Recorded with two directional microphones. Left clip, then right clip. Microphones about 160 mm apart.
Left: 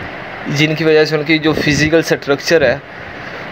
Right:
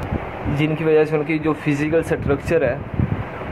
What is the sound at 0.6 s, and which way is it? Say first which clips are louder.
Speech: left 6 dB; 30° left (ahead or behind).